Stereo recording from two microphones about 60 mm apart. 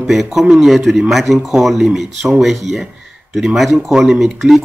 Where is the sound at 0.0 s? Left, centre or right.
Centre.